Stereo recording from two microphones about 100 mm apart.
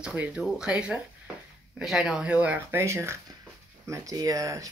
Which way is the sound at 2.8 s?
30° right (ahead or behind).